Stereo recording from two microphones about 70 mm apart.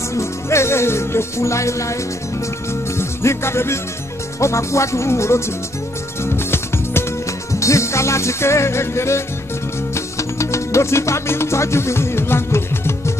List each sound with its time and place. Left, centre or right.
0.1 s music: left
3.0 s music: left
7.5 s music: left